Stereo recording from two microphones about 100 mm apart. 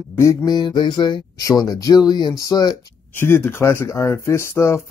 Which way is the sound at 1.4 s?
40° left (ahead or behind).